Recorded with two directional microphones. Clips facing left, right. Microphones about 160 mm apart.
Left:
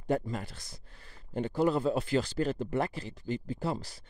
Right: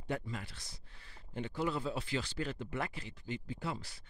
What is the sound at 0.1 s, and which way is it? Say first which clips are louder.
Speech: left 8 dB; 40° left (ahead or behind).